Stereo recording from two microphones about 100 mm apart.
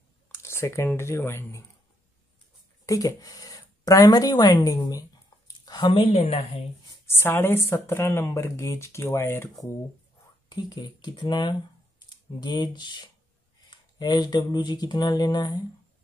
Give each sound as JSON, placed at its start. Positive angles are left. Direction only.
{"t": 0.3, "sound": "speech", "side_deg": 25}
{"t": 2.9, "sound": "speech", "side_deg": 35}
{"t": 5.7, "sound": "speech", "side_deg": 55}
{"t": 7.1, "sound": "speech", "side_deg": 25}
{"t": 10.5, "sound": "speech", "side_deg": 40}